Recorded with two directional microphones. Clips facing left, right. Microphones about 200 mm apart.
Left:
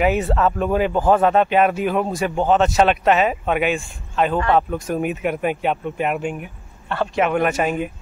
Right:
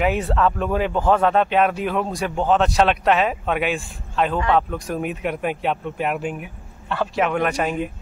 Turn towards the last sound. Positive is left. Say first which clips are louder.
# left 2 dB
turn(degrees=5)  # may be behind; listen again after turning